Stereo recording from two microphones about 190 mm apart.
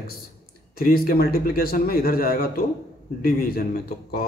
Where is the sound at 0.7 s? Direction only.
50° left (ahead or behind).